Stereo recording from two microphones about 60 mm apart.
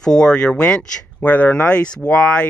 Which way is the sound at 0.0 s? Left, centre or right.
Centre.